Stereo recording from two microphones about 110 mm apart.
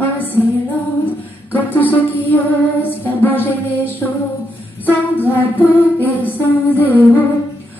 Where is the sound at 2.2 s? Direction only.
15° left (ahead or behind).